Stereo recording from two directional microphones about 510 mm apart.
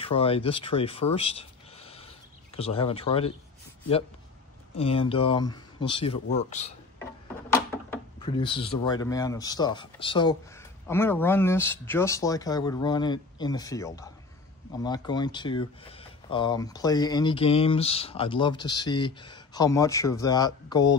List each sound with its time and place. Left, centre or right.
0.0 s speech: centre
4.7 s speech: centre